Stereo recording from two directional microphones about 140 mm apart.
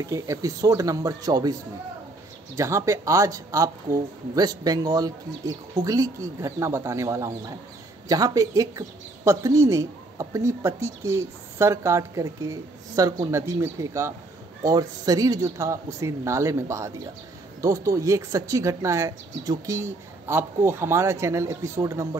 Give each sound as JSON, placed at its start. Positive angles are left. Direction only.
{"t": 0.0, "sound": "speech", "side_deg": -20}